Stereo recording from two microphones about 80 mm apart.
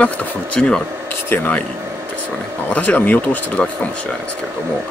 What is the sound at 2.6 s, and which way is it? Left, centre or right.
Speech, centre.